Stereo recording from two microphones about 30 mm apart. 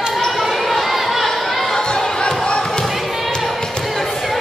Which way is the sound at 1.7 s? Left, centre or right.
Left.